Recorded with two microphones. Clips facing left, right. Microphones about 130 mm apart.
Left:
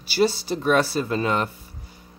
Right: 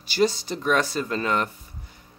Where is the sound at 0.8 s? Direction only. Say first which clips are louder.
Left 3 dB; 30° left (ahead or behind).